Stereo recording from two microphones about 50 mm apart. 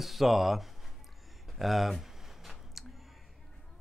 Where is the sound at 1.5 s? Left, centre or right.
Centre.